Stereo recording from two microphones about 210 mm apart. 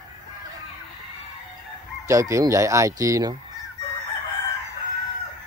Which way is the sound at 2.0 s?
15° right (ahead or behind).